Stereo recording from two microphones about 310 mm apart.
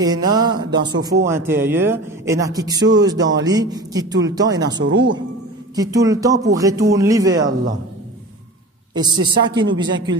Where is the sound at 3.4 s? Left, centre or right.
Centre.